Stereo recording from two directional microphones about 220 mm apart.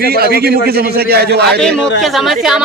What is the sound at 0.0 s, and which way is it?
A man's voice, 45° right (ahead or behind).